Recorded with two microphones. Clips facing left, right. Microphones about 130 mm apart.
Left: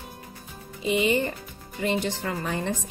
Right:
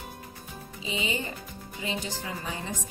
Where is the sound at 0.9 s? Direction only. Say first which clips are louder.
Left 9 dB; 60° left (ahead or behind).